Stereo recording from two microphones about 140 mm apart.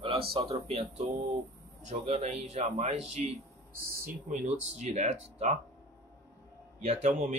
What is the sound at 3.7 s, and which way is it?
Speech, 80° right.